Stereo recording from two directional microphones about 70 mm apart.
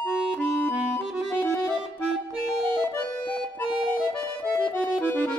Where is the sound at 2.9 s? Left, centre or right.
Left.